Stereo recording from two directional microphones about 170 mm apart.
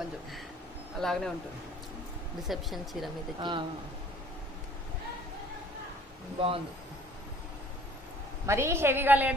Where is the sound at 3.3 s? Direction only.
30° right (ahead or behind).